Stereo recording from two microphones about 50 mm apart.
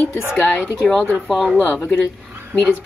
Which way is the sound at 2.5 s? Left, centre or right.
Right.